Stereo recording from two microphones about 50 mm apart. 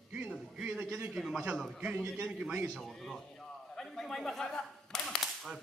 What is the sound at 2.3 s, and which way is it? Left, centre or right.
Speech, right.